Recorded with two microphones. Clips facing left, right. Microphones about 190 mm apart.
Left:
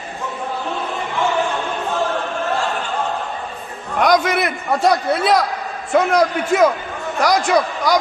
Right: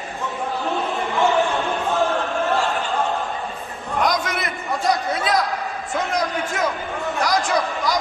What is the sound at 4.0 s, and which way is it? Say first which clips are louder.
A man's voice: left 7 dB; 65° left (ahead or behind).